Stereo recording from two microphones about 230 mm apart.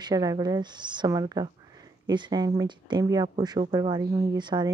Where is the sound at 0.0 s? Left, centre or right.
Centre.